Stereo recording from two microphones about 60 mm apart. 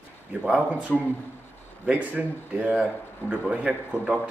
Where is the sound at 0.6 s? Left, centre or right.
Right.